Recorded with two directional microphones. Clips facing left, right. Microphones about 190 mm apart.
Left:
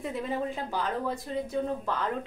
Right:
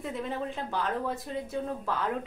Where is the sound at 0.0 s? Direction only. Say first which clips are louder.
Left 2 dB; centre (ahead or behind).